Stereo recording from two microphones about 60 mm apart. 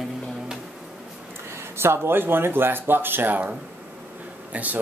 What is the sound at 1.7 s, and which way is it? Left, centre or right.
Speech, right.